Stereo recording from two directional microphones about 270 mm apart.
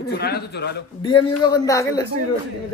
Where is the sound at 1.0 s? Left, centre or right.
Centre.